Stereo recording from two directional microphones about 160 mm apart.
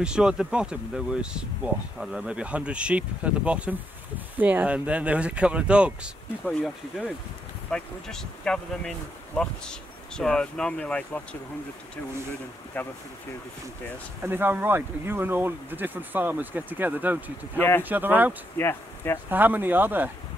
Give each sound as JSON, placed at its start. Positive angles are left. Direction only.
{"t": 0.0, "sound": "speech", "side_deg": -5}
{"t": 12.7, "sound": "speech", "side_deg": 10}
{"t": 14.2, "sound": "speech", "side_deg": -15}
{"t": 17.6, "sound": "speech", "side_deg": 15}
{"t": 17.8, "sound": "speech", "side_deg": -10}
{"t": 18.6, "sound": "speech", "side_deg": 15}
{"t": 19.3, "sound": "speech", "side_deg": -10}